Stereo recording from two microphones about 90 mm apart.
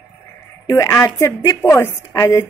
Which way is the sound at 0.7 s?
35° left (ahead or behind).